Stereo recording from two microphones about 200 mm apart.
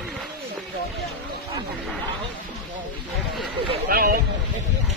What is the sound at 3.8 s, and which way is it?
Vehicle, 45° right (ahead or behind).